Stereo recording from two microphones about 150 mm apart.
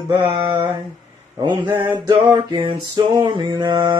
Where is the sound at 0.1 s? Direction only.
35° right (ahead or behind).